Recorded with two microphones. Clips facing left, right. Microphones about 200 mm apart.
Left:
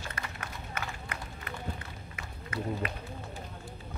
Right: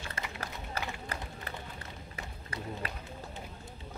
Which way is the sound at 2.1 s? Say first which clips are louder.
Left 6 dB; 30° right (ahead or behind).